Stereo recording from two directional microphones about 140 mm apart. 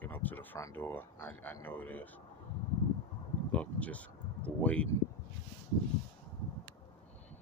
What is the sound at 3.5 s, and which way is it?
Speech, 10° left (ahead or behind).